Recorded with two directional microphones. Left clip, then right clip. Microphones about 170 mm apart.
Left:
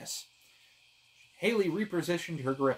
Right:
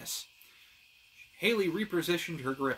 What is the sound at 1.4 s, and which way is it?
Speech, centre (ahead or behind).